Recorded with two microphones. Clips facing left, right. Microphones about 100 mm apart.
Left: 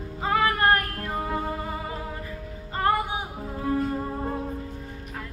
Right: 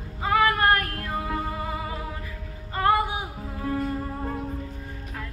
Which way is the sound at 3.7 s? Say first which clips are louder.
Left 2 dB; 20° left (ahead or behind).